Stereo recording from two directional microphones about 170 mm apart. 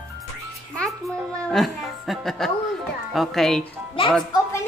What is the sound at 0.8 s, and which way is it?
Music, centre (ahead or behind).